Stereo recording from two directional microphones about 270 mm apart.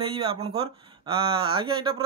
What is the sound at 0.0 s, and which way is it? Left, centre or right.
Speech, right.